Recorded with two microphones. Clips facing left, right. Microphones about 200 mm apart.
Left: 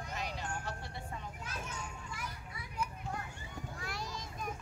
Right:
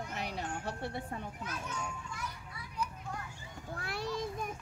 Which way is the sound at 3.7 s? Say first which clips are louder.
Right 8 dB; 60° right (ahead or behind).